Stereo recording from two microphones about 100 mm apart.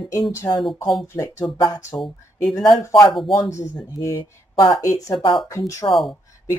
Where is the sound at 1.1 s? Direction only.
30° left (ahead or behind).